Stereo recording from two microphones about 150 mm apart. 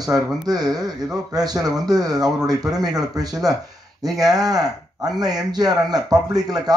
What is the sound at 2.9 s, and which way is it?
Speech, 25° right (ahead or behind).